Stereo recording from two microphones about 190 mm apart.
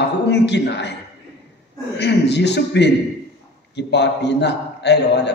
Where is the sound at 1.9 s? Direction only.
65° left (ahead or behind).